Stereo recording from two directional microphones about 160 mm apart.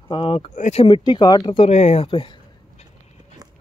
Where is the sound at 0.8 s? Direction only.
25° left (ahead or behind).